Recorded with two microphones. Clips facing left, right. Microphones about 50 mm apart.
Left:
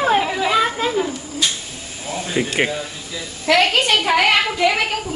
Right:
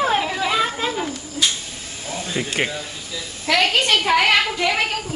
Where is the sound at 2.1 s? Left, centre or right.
Centre.